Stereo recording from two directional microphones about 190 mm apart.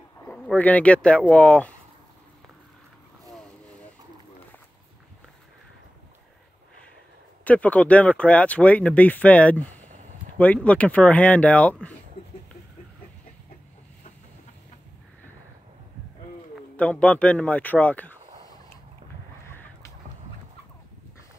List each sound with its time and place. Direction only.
0.3 s speech: 10° left (ahead or behind)
7.4 s speech: 5° left (ahead or behind)
16.7 s speech: 5° left (ahead or behind)
19.4 s a sound: 10° left (ahead or behind)